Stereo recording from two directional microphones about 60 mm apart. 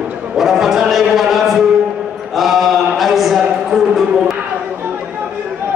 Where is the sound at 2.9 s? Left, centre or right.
Centre.